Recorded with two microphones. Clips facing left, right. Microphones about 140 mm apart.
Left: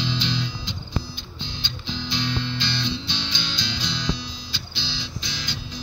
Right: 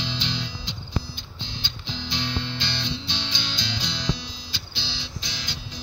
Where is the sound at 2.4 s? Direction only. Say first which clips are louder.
Left 3 dB; 30° right (ahead or behind).